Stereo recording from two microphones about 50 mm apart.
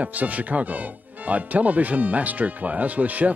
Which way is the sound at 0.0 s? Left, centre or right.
Right.